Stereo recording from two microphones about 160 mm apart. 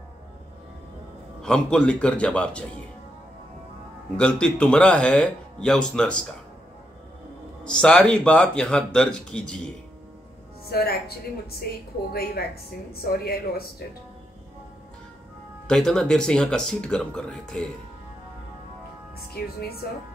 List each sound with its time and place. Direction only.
1.4 s speech: 5° left (ahead or behind)
4.2 s speech: 5° left (ahead or behind)
7.6 s speech: 5° left (ahead or behind)
10.7 s a woman's voice: 75° left (ahead or behind)
15.6 s speech: 5° left (ahead or behind)
19.1 s a woman's voice: 75° left (ahead or behind)